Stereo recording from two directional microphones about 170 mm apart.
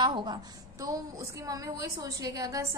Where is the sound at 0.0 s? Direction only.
25° right (ahead or behind).